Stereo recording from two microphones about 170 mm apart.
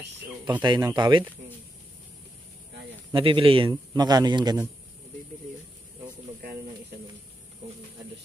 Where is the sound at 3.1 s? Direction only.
30° right (ahead or behind).